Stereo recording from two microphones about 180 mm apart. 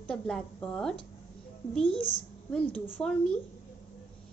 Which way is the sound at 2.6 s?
30° left (ahead or behind).